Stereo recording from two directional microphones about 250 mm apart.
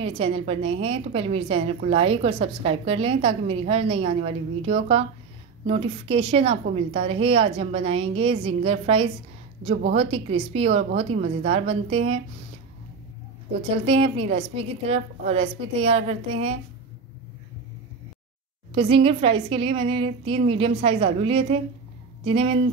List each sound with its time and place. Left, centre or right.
0.0 s a woman's voice: right
13.8 s a woman's voice: right
18.8 s a woman's voice: right